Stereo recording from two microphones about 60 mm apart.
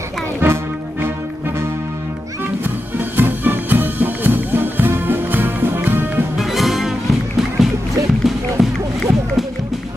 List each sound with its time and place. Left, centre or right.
0.4 s music: right
2.6 s music: right
6.3 s music: centre